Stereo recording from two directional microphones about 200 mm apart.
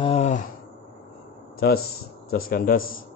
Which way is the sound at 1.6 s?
50° left (ahead or behind).